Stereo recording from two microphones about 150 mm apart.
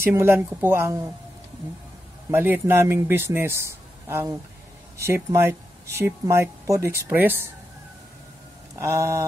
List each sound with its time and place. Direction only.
0.0 s speech: 15° right (ahead or behind)
2.3 s speech: 15° right (ahead or behind)
8.7 s mantra: 20° right (ahead or behind)